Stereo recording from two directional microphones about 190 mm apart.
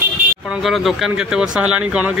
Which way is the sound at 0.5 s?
Centre (ahead or behind).